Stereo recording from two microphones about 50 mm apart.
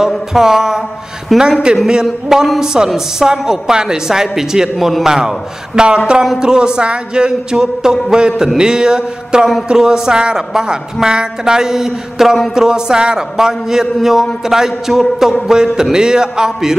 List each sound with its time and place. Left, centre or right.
0.3 s a woman's voice: centre
1.3 s a sound: centre
2.6 s a woman's voice: centre